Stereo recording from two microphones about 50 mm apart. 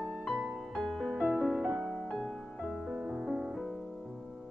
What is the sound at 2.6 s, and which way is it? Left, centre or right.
Music, centre.